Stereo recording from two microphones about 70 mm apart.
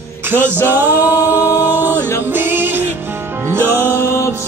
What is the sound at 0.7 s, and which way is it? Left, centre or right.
A capella, right.